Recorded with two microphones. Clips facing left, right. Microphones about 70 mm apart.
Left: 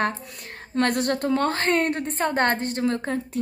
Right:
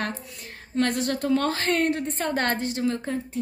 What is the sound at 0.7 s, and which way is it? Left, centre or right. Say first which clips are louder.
A woman's voice: left 2 dB; left.